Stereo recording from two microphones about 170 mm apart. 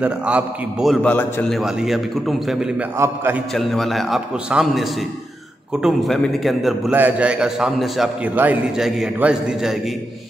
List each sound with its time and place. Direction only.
0.0 s a man's voice: 5° right (ahead or behind)
3.0 s a man's voice: 15° right (ahead or behind)
3.5 s a man's voice: centre (ahead or behind)